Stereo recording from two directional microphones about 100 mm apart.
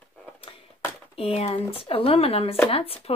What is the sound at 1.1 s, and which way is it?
Speech, 80° left.